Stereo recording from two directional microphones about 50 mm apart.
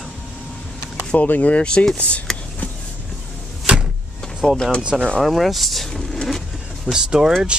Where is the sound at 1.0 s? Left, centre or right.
Left.